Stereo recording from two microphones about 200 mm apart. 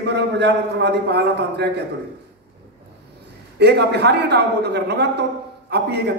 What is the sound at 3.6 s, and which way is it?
A man's voice, 55° right (ahead or behind).